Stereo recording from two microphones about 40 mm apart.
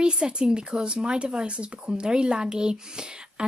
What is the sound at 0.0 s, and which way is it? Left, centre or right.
Speech, right.